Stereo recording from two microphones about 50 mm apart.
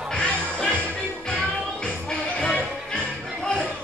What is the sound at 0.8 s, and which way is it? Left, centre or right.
Music, left.